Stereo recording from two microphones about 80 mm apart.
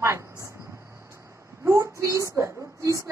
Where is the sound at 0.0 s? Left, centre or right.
Right.